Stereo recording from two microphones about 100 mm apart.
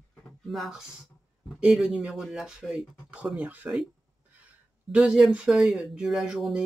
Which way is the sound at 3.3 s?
15° right (ahead or behind).